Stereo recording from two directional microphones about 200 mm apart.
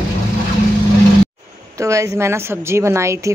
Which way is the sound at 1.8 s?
15° right (ahead or behind).